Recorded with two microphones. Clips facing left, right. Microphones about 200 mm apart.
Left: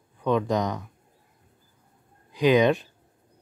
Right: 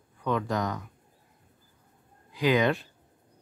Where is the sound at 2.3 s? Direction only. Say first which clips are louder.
Left 5 dB; 20° left (ahead or behind).